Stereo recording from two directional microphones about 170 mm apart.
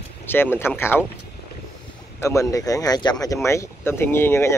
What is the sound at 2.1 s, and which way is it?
Speech, 20° left (ahead or behind).